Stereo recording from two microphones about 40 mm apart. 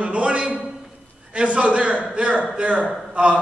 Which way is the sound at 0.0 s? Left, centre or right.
Right.